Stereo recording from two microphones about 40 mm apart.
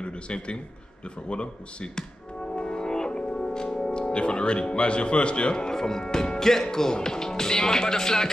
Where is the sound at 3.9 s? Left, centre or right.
Left.